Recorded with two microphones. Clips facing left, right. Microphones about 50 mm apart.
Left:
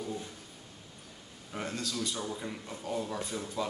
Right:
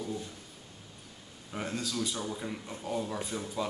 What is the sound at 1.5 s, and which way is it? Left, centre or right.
Speech, centre.